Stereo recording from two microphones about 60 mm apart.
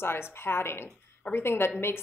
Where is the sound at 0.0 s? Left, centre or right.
Left.